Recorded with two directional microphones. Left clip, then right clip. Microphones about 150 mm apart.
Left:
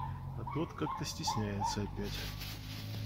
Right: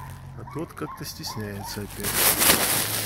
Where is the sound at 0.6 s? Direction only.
5° right (ahead or behind).